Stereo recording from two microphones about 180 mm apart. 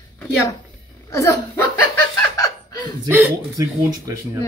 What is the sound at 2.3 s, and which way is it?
Chuckle, 20° left (ahead or behind).